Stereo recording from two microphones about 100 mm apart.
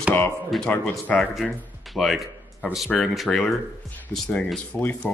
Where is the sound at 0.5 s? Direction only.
10° left (ahead or behind).